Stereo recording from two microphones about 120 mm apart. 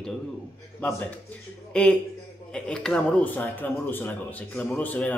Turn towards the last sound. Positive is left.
turn(degrees=15)  # may be behind; listen again after turning